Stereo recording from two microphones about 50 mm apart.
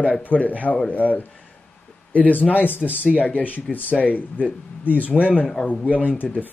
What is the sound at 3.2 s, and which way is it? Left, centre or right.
Speech, left.